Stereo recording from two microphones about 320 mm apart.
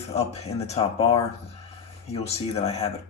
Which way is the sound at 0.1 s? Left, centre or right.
Centre.